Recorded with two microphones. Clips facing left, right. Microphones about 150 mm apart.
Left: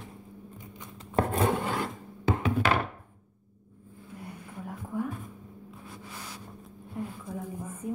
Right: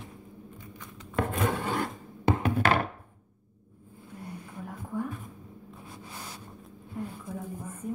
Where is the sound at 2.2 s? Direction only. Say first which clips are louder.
Right 1 dB; 60° right (ahead or behind).